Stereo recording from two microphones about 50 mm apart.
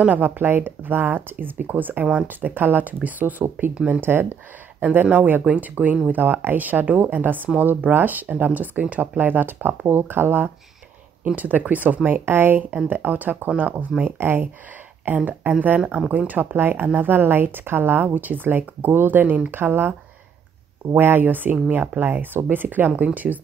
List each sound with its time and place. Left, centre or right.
0.0 s a woman's voice: right
3.7 s speech: right
4.0 s speech: right
4.9 s a woman's voice: right
11.3 s a woman's voice: right
12.8 s a woman's voice: right
19.5 s speech: right
20.9 s a woman's voice: right